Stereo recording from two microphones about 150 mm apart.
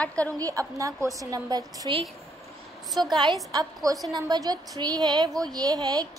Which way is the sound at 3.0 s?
30° right (ahead or behind).